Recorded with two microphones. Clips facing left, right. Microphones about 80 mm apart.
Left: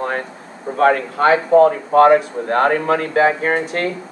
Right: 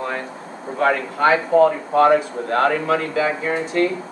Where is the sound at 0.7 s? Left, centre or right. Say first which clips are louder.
Left 4 dB; left.